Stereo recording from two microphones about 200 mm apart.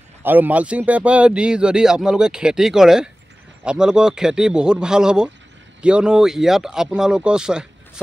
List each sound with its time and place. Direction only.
0.2 s a man's voice: 10° right (ahead or behind)